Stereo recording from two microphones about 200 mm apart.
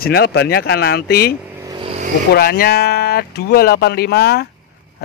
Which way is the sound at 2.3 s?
50° left (ahead or behind).